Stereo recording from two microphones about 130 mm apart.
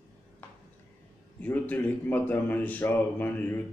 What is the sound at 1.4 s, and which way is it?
Speech, 10° left (ahead or behind).